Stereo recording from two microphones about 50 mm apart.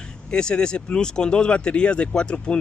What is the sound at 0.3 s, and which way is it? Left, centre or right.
Speech, centre.